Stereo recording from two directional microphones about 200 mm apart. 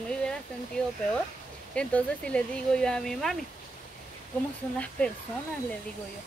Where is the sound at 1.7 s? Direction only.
5° left (ahead or behind).